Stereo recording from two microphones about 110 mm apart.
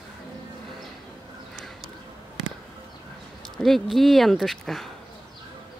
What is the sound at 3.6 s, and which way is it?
Speech, centre (ahead or behind).